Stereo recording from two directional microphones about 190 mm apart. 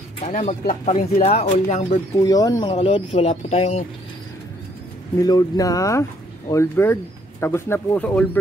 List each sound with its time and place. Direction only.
0.2 s speech: 35° left (ahead or behind)
2.1 s speech: 20° left (ahead or behind)
2.7 s speech: 35° left (ahead or behind)
5.2 s speech: 20° left (ahead or behind)